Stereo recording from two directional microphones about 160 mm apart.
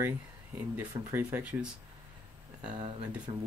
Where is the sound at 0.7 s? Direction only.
15° right (ahead or behind).